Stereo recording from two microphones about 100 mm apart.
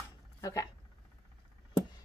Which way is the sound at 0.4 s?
35° left (ahead or behind).